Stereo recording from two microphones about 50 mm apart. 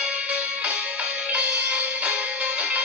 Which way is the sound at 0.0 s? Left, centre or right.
Right.